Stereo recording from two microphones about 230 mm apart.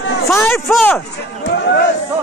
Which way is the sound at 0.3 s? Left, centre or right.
Centre.